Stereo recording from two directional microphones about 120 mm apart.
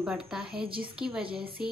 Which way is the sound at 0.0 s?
5° right (ahead or behind).